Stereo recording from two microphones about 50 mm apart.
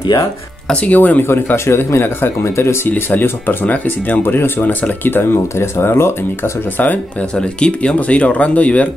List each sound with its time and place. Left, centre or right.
0.7 s speech: left
0.9 s speech: left
1.2 s speech: left
2.9 s speech: left
6.8 s speech: left
7.3 s speech: centre